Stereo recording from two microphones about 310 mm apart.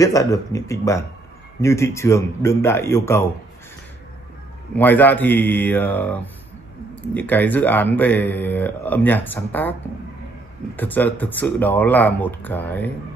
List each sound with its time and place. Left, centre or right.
0.0 s speech: centre
4.7 s speech: centre
7.2 s speech: centre
10.8 s speech: centre